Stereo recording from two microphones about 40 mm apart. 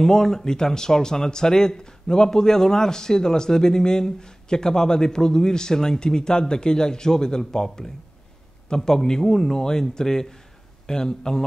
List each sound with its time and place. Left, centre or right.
0.0 s a man's voice: centre